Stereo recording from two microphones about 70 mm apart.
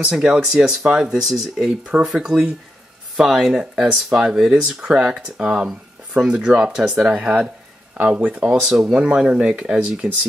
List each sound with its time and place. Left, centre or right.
0.0 s speech: centre
7.2 s speech: right
8.5 s speech: centre